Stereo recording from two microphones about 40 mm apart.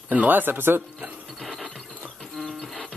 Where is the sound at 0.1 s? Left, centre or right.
Right.